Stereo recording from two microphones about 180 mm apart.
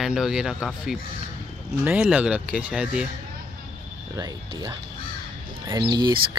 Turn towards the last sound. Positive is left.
turn(degrees=-25)  # may be behind; listen again after turning